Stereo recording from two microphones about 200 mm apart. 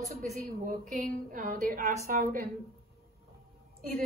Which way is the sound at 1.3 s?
45° right (ahead or behind).